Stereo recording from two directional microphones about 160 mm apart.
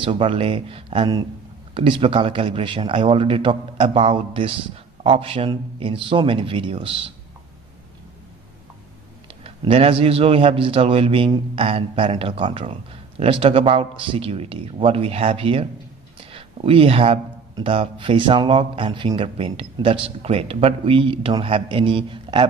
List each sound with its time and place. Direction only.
0.0 s speech: 35° right (ahead or behind)
9.4 s speech: 35° right (ahead or behind)